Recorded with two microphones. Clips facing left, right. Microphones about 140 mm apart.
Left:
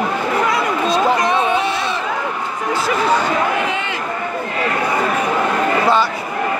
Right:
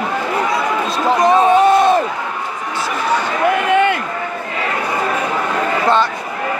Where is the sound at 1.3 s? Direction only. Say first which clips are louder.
Right 7 dB; 40° right (ahead or behind).